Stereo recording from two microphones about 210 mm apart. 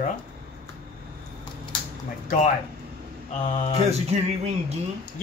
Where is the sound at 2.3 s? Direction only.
35° left (ahead or behind).